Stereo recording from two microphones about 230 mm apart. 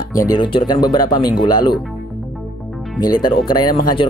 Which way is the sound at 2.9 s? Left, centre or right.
Centre.